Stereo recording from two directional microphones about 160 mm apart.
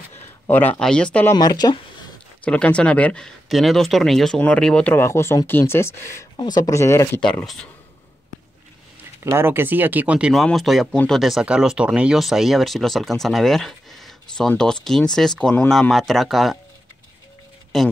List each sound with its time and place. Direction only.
0.5 s speech: 10° left (ahead or behind)
1.3 s speech: 25° left (ahead or behind)
2.4 s speech: 10° left (ahead or behind)
7.2 s speech: 5° left (ahead or behind)
9.2 s speech: 15° right (ahead or behind); by 16.5 s centre (ahead or behind)